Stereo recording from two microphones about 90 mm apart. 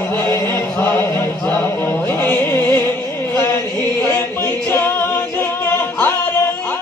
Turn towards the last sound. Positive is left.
turn(degrees=25)  # may be behind; listen again after turning